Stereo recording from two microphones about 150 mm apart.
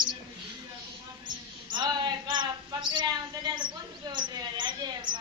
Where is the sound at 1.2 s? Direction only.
30° right (ahead or behind).